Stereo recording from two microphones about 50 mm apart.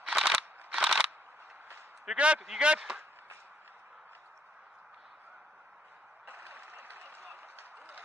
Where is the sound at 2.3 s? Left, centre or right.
Centre.